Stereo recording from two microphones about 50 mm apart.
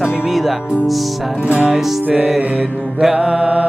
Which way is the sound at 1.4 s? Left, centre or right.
Right.